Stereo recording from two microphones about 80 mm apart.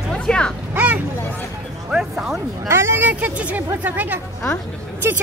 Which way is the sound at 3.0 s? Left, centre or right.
Centre.